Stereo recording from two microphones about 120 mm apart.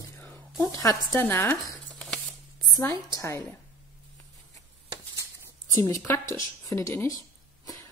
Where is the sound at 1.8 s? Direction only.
5° left (ahead or behind).